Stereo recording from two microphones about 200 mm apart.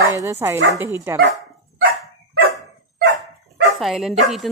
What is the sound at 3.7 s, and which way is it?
Speech, centre (ahead or behind).